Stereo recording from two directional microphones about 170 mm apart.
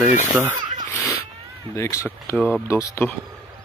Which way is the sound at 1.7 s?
20° left (ahead or behind).